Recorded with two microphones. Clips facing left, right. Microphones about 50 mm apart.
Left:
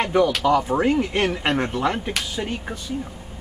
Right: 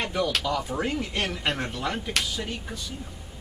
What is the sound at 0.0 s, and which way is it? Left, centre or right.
Speech, left.